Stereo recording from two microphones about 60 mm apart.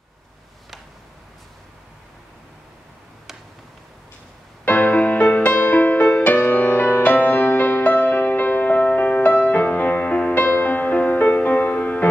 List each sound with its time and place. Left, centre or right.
4.6 s music: left